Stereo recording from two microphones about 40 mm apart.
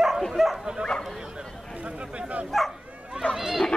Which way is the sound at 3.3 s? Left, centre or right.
Centre.